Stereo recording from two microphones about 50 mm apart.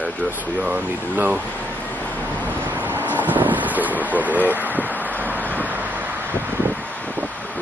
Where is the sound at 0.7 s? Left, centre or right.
Right.